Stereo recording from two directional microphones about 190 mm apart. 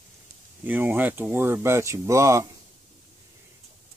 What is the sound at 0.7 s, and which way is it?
Speech, 10° right (ahead or behind).